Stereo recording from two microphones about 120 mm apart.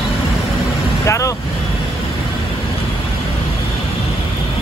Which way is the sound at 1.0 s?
25° left (ahead or behind).